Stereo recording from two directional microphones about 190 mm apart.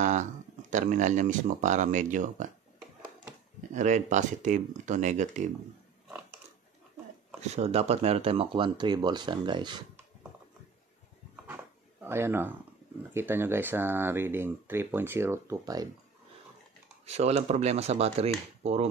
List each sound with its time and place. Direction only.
0.0 s speech: 40° right (ahead or behind)
3.7 s speech: 40° right (ahead or behind)
7.3 s speech: 35° right (ahead or behind)
12.0 s speech: 10° right (ahead or behind)
17.0 s speech: 35° right (ahead or behind)